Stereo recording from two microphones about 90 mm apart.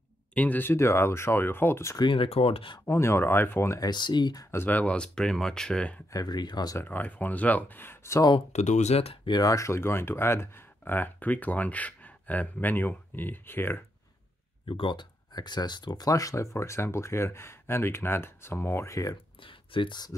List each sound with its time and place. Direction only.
0.3 s speech: 15° left (ahead or behind)
2.0 s speech: 75° left (ahead or behind)
2.8 s speech: 30° left (ahead or behind)
3.8 s speech: 55° left (ahead or behind)
4.5 s speech: 25° left (ahead or behind)
6.1 s speech: 50° left (ahead or behind)
6.8 s speech: 20° left (ahead or behind)
9.0 s speech: 85° left
9.4 s speech: 35° left (ahead or behind)
14.7 s speech: 70° left (ahead or behind); by 19.1 s 35° left (ahead or behind)
19.4 s speech: 70° left (ahead or behind)